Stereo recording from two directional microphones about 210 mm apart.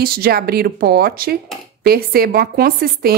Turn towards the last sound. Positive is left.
turn(degrees=-45)  # may be behind; listen again after turning